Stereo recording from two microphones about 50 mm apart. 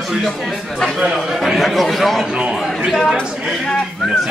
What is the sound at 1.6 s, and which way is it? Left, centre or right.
Speech, centre.